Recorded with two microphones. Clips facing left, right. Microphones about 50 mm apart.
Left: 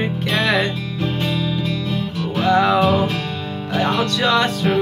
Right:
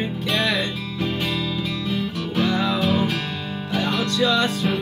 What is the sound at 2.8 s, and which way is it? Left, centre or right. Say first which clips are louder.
Music: left 4 dB; centre.